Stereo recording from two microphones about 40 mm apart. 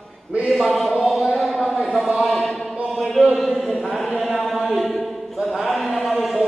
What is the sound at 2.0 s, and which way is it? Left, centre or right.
Chant, centre.